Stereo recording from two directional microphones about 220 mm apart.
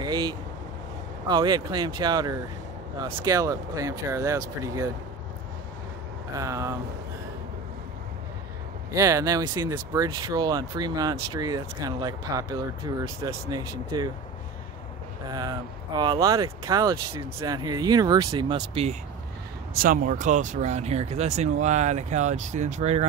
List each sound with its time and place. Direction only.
0.0 s speech: 20° right (ahead or behind)
6.3 s speech: 15° right (ahead or behind)
8.9 s speech: 15° right (ahead or behind)
15.2 s speech: 20° right (ahead or behind)
19.8 s speech: 40° right (ahead or behind)